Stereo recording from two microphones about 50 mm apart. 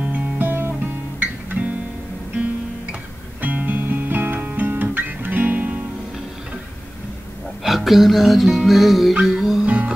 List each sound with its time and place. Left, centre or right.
0.0 s music: right
1.2 s guitar: right
3.3 s music: right
7.6 s music: centre
9.7 s music: right